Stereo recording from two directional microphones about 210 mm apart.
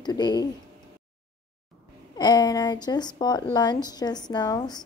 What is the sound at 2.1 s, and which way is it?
Speech, 20° left (ahead or behind).